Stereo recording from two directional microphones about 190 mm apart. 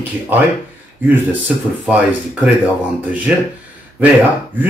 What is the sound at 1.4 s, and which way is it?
Speech, 5° right (ahead or behind).